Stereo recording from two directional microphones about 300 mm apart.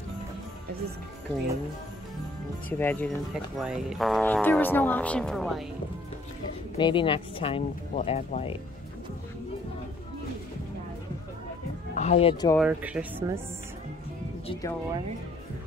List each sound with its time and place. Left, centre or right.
2.8 s speech: centre
6.8 s speech: centre
11.9 s speech: left
12.5 s speech: centre
14.5 s speech: centre